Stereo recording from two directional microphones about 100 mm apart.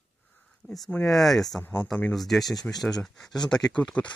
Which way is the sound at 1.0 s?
Centre (ahead or behind).